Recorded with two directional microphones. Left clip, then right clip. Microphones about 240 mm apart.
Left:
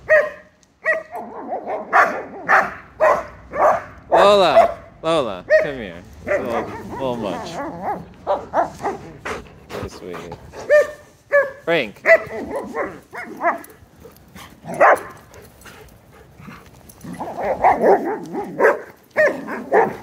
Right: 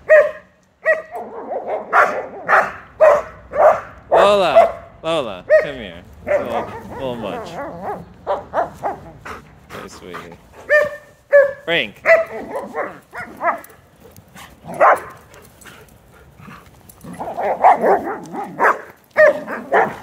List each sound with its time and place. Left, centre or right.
0.0 s dog: centre
4.2 s speech: centre
7.5 s dog: centre
9.2 s pant: centre
10.6 s dog: left
11.3 s dog: centre
11.6 s speech: centre
12.0 s dog: centre
14.7 s dog: left
16.4 s dog: centre